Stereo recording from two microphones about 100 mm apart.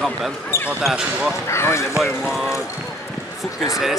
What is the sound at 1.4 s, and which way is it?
Speech, 25° left (ahead or behind).